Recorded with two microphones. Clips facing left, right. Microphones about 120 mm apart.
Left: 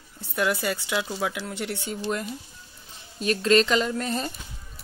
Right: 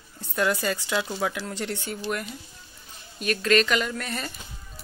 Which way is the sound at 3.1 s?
25° left (ahead or behind).